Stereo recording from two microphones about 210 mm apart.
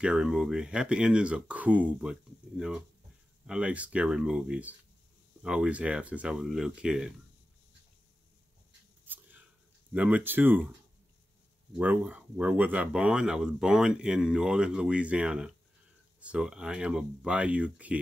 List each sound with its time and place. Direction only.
0.0 s speech: 5° right (ahead or behind)
9.0 s a sound: 10° right (ahead or behind)
9.9 s speech: 5° right (ahead or behind)
11.8 s speech: 5° right (ahead or behind)